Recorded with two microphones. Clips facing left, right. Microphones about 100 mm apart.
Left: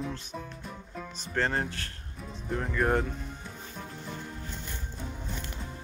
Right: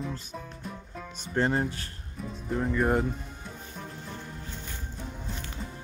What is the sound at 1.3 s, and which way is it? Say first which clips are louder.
Speech: right 3 dB; 10° right (ahead or behind).